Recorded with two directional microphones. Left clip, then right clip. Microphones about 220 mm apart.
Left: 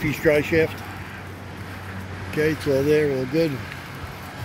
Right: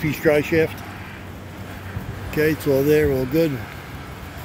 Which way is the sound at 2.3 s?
15° right (ahead or behind).